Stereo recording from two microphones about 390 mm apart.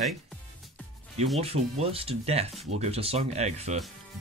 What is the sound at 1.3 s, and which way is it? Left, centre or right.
Speech, centre.